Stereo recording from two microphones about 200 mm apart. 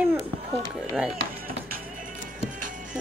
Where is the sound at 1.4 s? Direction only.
45° right (ahead or behind).